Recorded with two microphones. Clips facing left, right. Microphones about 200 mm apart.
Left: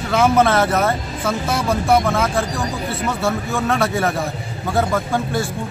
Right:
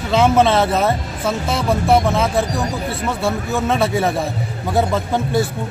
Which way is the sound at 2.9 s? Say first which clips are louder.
Even; centre (ahead or behind).